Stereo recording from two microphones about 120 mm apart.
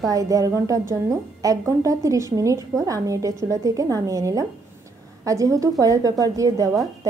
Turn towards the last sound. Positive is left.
turn(degrees=-30)  # may be behind; listen again after turning